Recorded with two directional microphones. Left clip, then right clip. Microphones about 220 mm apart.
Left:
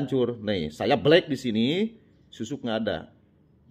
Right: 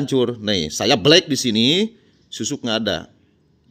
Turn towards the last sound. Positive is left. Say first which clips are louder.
# right 7 dB
turn(degrees=-35)  # may be behind; listen again after turning